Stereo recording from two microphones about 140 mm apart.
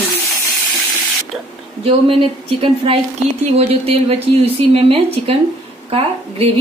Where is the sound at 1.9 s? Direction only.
40° right (ahead or behind).